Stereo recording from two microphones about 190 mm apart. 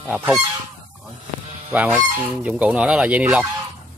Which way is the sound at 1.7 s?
10° right (ahead or behind).